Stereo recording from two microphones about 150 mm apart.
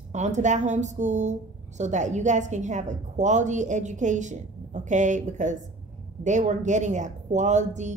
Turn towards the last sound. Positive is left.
turn(degrees=-50)  # may be behind; listen again after turning